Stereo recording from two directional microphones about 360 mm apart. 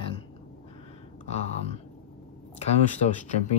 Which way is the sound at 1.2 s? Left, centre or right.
Centre.